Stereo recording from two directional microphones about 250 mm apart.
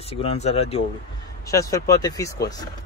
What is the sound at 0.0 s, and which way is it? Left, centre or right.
Speech, left.